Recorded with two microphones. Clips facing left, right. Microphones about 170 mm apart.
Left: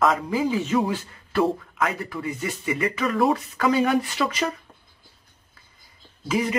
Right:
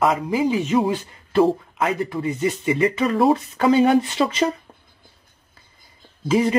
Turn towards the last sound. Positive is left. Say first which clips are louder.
# right 6 dB
turn(degrees=-30)  # may be behind; listen again after turning